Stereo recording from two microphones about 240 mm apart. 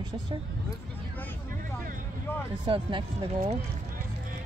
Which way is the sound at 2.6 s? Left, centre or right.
Centre.